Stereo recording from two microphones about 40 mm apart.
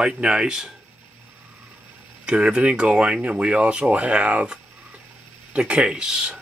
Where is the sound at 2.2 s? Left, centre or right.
Right.